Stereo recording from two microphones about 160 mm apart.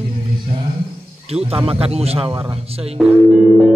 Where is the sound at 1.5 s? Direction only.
35° right (ahead or behind).